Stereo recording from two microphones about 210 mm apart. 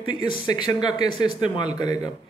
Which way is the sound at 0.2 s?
20° left (ahead or behind).